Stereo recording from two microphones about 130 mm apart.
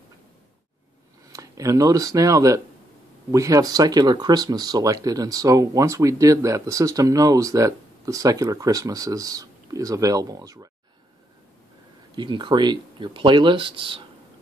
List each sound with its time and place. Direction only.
1.3 s speech: 25° right (ahead or behind)
12.2 s speech: 40° right (ahead or behind)